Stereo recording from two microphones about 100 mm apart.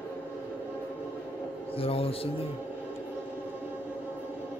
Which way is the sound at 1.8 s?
75° left (ahead or behind).